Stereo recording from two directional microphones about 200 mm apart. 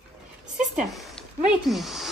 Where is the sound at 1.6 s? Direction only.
Centre (ahead or behind).